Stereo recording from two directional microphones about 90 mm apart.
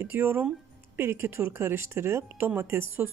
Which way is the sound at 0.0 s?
25° right (ahead or behind).